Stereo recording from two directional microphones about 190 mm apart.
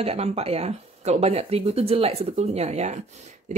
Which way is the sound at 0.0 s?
30° right (ahead or behind).